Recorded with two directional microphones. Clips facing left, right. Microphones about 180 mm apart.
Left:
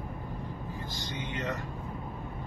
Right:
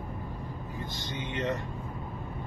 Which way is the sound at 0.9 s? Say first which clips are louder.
Right 3 dB; 25° right (ahead or behind).